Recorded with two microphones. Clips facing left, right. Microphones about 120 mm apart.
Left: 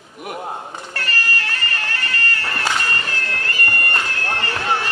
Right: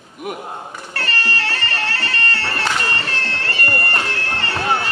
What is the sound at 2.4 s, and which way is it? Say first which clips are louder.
Bagpipes: right 1 dB; 30° right (ahead or behind).